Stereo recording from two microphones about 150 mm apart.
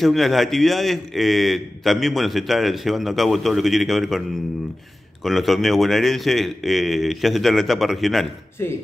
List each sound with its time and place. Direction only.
0.0 s a man's voice: centre (ahead or behind)
5.2 s a man's voice: centre (ahead or behind)